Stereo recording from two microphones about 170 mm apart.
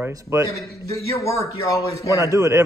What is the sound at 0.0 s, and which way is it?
Speech, 15° right (ahead or behind).